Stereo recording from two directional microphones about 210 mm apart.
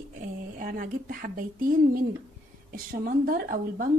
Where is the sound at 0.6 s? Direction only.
40° right (ahead or behind).